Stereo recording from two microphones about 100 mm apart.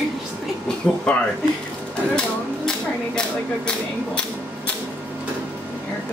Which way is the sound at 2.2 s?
5° left (ahead or behind).